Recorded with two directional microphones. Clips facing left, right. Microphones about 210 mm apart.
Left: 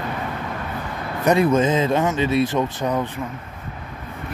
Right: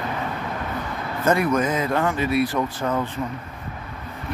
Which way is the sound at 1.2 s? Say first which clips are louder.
Left 3 dB; 25° left (ahead or behind).